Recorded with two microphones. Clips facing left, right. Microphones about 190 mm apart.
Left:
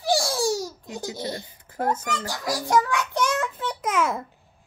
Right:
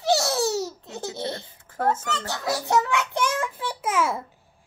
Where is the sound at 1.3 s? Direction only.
15° left (ahead or behind).